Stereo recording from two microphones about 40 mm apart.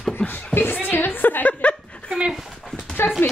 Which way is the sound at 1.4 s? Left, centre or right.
Left.